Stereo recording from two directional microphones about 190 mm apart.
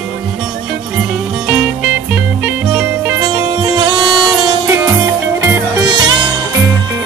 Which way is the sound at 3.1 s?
20° right (ahead or behind).